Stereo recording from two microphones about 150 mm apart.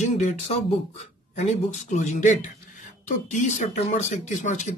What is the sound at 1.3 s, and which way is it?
Speech, 50° left (ahead or behind).